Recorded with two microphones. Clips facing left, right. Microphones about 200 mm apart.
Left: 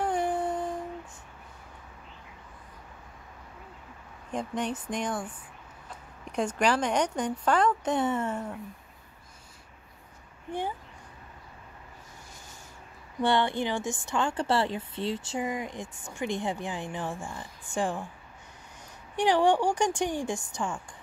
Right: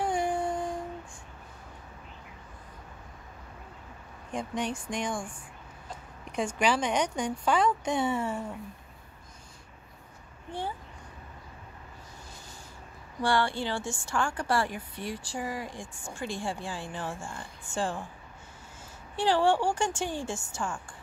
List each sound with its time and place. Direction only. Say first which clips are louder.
0.0 s music: left 1 dB; 10° right (ahead or behind)
4.3 s speech: left 1 dB; 10° right (ahead or behind)
6.3 s speech: left 1 dB; 5° right (ahead or behind)
13.2 s a woman's voice: left 2 dB; 20° left (ahead or behind)
19.1 s a woman's voice: left 2 dB; 15° left (ahead or behind)